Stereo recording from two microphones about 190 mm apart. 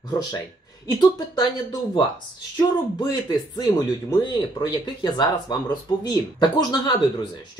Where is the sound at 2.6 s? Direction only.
20° left (ahead or behind).